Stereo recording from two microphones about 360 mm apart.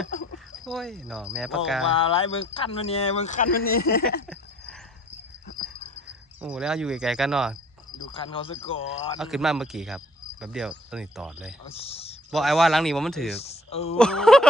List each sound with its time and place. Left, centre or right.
0.7 s speech: centre
1.9 s speech: centre
6.4 s speech: centre
8.1 s speech: centre
9.2 s speech: centre
11.7 s speech: centre
12.3 s speech: centre
13.4 s speech: centre
13.9 s speech: centre